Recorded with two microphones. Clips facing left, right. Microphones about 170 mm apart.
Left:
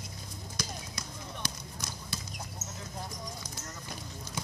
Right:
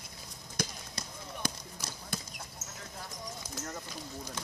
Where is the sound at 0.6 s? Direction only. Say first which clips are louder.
Right 3 dB; 55° right (ahead or behind).